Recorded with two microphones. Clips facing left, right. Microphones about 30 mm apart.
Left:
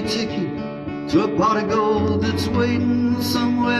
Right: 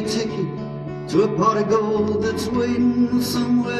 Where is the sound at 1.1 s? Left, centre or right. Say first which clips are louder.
Even; centre.